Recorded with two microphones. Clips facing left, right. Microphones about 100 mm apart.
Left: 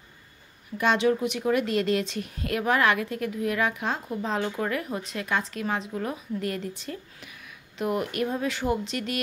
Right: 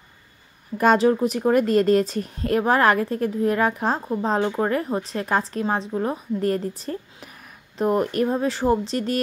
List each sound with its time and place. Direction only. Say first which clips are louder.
0.7 s speech: right 6 dB; 40° right (ahead or behind)